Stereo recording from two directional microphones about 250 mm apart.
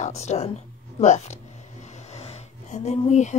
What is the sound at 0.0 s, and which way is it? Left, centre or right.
A woman's voice, left.